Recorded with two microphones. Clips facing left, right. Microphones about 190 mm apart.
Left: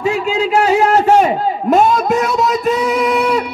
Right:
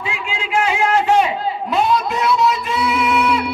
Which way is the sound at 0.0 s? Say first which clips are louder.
Left 11 dB; 40° left (ahead or behind).